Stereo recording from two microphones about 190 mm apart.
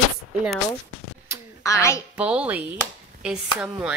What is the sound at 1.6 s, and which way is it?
Speech, 15° left (ahead or behind).